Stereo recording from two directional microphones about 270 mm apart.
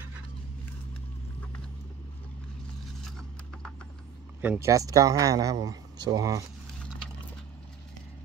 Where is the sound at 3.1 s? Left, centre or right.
Centre.